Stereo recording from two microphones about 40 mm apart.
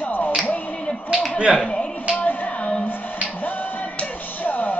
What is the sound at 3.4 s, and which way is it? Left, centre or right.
Music, left.